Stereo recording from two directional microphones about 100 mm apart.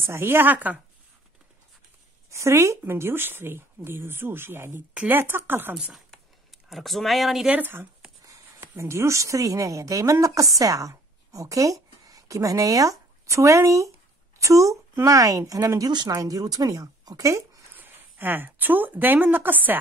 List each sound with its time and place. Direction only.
0.0 s speech: 25° right (ahead or behind)
2.3 s speech: 30° right (ahead or behind)
6.7 s speech: centre (ahead or behind)
7.4 s speech: 15° right (ahead or behind); by 17.4 s 35° right (ahead or behind)
17.7 s speech: 20° right (ahead or behind)